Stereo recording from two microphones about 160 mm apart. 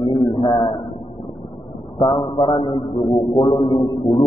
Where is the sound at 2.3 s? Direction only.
30° left (ahead or behind).